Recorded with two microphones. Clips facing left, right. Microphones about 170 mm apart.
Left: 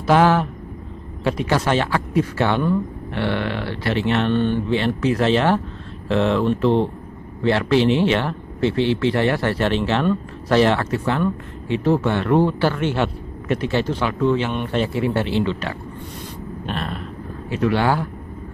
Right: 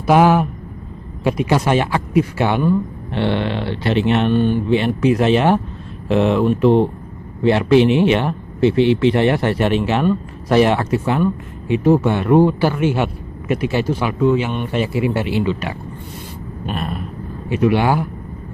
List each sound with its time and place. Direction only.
0.0 s speech: 15° right (ahead or behind)